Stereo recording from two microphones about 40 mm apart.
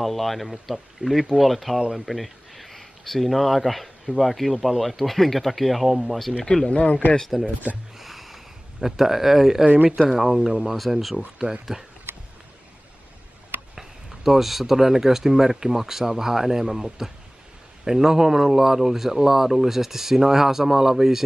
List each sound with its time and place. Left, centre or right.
0.0 s speech: centre
1.8 s speech: centre
2.0 s speech: centre
6.4 s speech: centre
6.7 s speech: left
7.3 s speech: centre
8.0 s a sound: centre
8.8 s speech: centre
12.1 s a sound: right
13.7 s speech: centre